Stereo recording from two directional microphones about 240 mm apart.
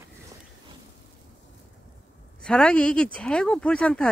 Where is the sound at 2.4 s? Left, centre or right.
Centre.